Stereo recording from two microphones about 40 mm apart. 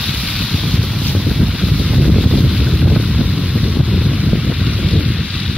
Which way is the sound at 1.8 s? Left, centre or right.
Right.